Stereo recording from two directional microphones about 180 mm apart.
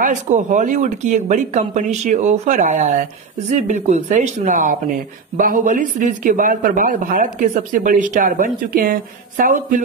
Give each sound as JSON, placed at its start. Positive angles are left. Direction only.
{"t": 0.0, "sound": "speech", "side_deg": -45}